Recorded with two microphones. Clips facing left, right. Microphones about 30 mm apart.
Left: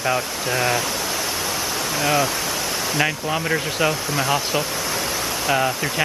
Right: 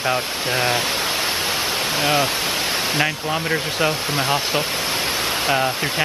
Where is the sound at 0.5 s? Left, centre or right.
Right.